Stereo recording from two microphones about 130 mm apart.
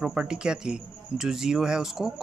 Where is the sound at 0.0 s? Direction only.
5° right (ahead or behind).